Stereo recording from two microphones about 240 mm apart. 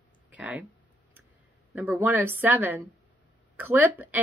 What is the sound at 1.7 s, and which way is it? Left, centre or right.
Speech, centre.